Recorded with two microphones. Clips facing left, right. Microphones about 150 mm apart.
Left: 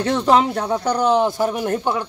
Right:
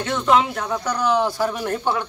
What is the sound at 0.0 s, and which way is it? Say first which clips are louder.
Speech: left 3 dB; 35° left (ahead or behind).